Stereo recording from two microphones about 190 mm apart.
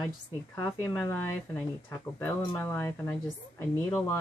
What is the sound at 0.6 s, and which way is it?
Speech, 15° left (ahead or behind).